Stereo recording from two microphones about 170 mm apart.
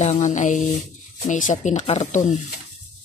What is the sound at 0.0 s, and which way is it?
Speech, 45° left (ahead or behind).